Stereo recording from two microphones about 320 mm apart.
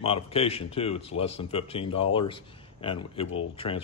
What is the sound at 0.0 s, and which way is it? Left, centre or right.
Speech, centre.